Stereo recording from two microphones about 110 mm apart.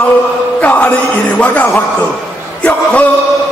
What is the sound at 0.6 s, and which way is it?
Chant, 15° left (ahead or behind).